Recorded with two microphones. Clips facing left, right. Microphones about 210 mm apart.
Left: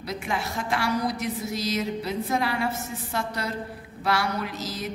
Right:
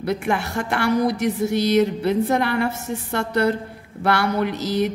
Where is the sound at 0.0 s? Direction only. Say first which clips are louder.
Right 8 dB; 60° right (ahead or behind).